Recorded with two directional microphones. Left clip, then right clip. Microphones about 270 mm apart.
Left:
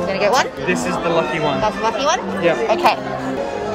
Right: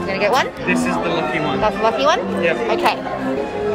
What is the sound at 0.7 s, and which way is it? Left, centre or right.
Speech, left.